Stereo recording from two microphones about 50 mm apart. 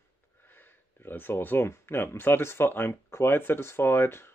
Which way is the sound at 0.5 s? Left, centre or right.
Left.